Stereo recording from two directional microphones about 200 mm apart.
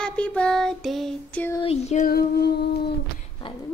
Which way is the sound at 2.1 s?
50° left (ahead or behind).